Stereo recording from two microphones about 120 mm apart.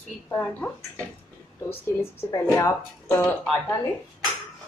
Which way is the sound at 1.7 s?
20° left (ahead or behind).